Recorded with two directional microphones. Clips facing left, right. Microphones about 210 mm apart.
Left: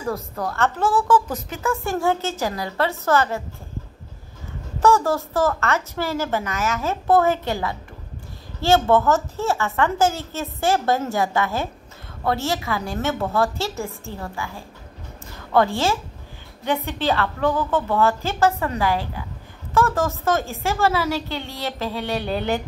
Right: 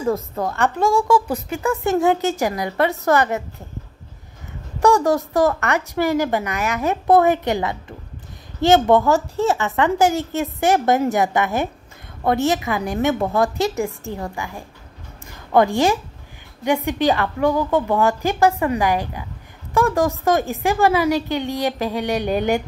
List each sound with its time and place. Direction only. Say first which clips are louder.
0.0 s a woman's voice: right 5 dB; 20° right (ahead or behind)
4.7 s a woman's voice: right 2 dB; 15° right (ahead or behind)